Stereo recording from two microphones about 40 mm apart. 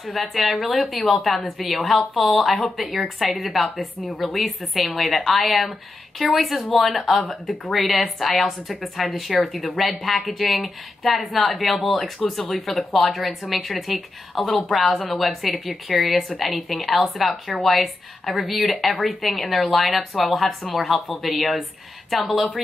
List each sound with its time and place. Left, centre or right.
0.0 s a woman's voice: centre